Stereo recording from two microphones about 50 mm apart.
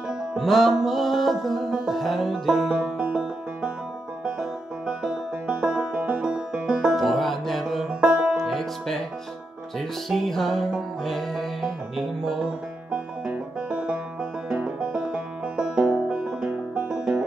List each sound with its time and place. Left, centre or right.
0.4 s music: centre
5.5 s music: right
7.0 s music: centre
7.9 s music: centre
8.5 s music: centre
13.7 s music: centre